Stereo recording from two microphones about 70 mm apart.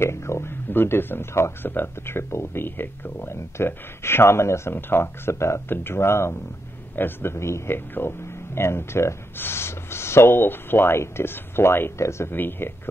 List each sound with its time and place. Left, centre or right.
0.0 s speech: left